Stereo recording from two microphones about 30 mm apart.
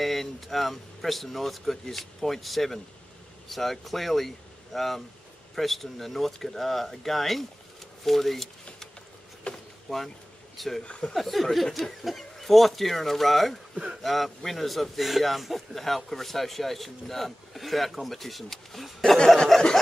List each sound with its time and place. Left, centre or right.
0.0 s a man's voice: centre
9.5 s vehicle: left
9.8 s speech: centre
10.9 s speech: left
11.1 s a man's voice: centre
19.2 s snicker: left